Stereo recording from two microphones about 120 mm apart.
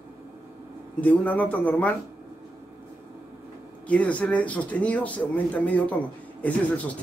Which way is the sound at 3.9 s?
10° left (ahead or behind).